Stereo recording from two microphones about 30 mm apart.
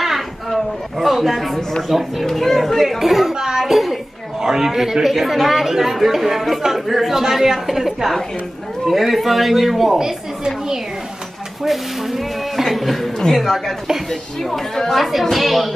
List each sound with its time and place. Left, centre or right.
0.0 s a sound: centre
1.9 s a man's voice: centre
2.2 s a man's voice: centre
3.3 s a sound: centre
3.7 s a sound: centre
4.4 s a woman's voice: centre
9.9 s a woman's voice: right
11.6 s a man's voice: centre
14.8 s speech: centre
15.3 s a man's voice: centre